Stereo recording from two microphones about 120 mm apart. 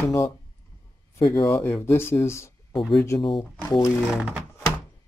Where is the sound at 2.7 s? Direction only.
Centre (ahead or behind).